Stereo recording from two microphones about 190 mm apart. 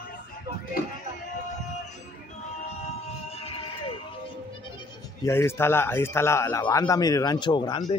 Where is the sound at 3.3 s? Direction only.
30° left (ahead or behind).